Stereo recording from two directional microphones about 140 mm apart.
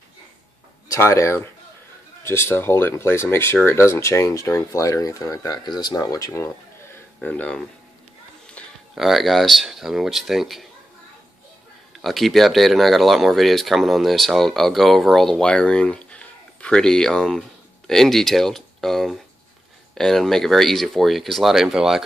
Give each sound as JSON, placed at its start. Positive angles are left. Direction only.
{"t": 0.8, "sound": "speech", "side_deg": 20}
{"t": 7.2, "sound": "speech", "side_deg": 10}
{"t": 8.6, "sound": "a sound", "side_deg": 10}
{"t": 8.9, "sound": "speech", "side_deg": 0}
{"t": 12.0, "sound": "speech", "side_deg": 0}